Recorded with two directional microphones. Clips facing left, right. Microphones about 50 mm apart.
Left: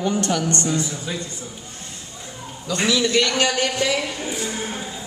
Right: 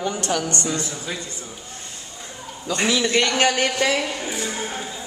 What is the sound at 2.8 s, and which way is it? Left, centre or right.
A man's voice, right.